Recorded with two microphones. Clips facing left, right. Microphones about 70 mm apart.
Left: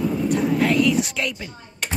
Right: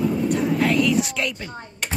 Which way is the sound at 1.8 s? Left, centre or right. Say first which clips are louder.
Left 1 dB; centre.